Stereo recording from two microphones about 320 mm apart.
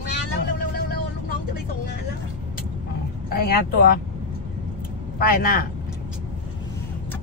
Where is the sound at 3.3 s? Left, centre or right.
Left.